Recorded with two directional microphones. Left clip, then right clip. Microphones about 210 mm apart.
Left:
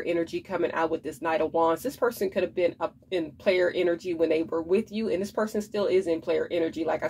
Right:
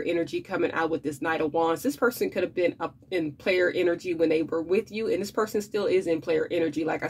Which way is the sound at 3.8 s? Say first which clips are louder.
Right 1 dB; 25° right (ahead or behind).